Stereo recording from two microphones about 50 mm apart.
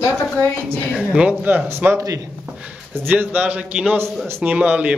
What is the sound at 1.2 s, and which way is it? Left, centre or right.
Speech, right.